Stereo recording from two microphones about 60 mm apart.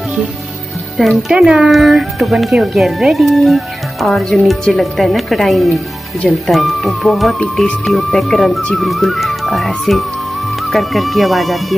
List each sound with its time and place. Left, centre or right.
0.9 s speech: centre